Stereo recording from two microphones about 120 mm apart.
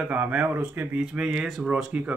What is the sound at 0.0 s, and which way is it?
Speech, 10° right (ahead or behind).